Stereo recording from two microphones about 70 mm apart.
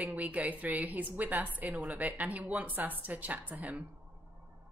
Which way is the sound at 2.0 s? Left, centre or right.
Right.